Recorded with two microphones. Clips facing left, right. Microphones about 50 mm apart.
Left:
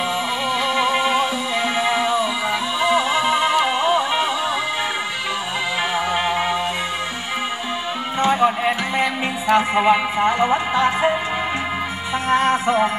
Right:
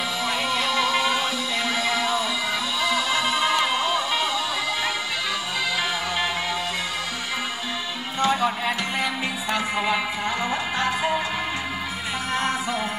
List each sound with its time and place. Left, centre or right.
0.5 s music: left
6.1 s music: left
8.2 s music: left
12.3 s music: left